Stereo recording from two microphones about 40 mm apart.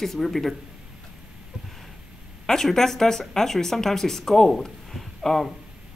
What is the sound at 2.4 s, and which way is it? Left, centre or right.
Speech, centre.